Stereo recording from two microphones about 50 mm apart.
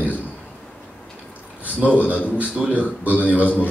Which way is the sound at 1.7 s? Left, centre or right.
Right.